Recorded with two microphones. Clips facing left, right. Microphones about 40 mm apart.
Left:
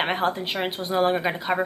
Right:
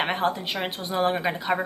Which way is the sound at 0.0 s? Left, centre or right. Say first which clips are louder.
Left 1 dB; centre.